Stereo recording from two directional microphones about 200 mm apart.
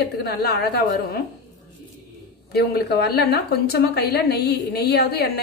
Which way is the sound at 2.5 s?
50° left (ahead or behind).